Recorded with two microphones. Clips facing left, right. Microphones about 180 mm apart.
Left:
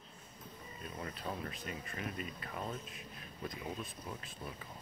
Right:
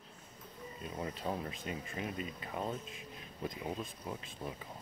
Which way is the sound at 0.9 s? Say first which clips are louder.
Right 4 dB; 25° right (ahead or behind).